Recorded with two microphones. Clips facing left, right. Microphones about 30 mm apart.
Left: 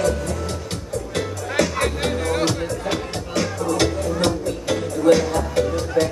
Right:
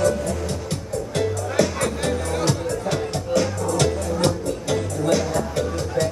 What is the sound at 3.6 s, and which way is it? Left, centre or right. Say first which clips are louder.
Music: left 1 dB; left.